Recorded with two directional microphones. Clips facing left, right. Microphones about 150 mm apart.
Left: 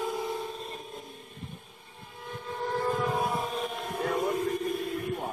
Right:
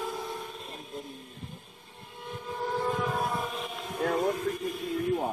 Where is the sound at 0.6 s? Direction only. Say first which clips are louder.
Even; centre (ahead or behind).